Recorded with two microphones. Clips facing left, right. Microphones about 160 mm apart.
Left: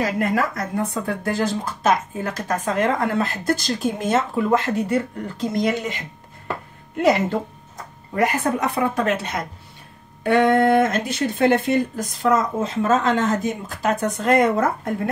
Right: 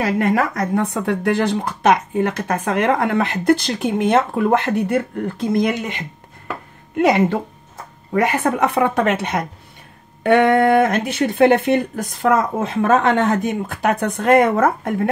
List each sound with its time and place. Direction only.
0.0 s speech: 65° right (ahead or behind)
7.0 s speech: 60° right (ahead or behind)